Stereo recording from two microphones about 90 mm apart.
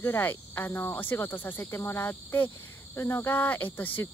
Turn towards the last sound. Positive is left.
turn(degrees=20)  # may be behind; listen again after turning